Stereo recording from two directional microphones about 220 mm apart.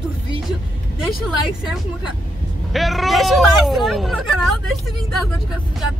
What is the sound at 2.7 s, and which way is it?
Speech, centre (ahead or behind).